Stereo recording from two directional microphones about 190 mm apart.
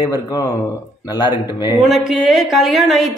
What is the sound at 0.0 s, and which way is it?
Speech, 20° left (ahead or behind).